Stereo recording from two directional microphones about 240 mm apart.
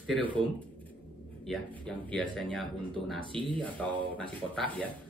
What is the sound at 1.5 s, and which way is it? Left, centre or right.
Speech, centre.